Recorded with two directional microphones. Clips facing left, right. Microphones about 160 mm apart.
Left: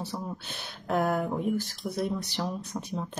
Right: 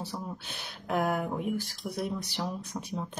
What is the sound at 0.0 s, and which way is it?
Speech, 10° right (ahead or behind).